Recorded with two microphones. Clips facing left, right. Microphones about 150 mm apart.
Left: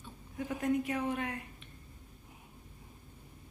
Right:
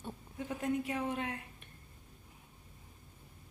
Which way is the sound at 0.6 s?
30° right (ahead or behind).